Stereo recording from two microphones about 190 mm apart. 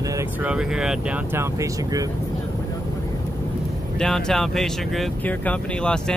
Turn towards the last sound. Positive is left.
turn(degrees=5)  # may be behind; listen again after turning